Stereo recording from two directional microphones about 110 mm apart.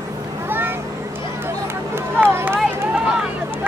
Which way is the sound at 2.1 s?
15° right (ahead or behind).